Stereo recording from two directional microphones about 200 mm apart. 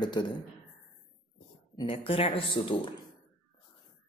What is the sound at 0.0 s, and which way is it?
Speech, 20° left (ahead or behind).